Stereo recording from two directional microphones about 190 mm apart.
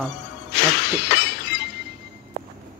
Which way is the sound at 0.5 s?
60° left (ahead or behind).